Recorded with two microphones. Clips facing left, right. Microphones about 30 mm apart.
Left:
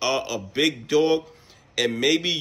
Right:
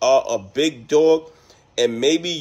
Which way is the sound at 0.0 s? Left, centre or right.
Left.